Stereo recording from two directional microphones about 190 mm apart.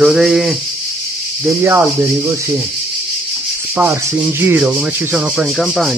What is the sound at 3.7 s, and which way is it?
Rub, 10° right (ahead or behind).